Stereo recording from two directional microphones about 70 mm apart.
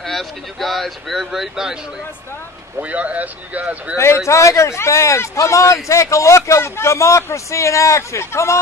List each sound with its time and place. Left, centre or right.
0.0 s speech: centre
2.8 s speech: centre
4.3 s a man's voice: left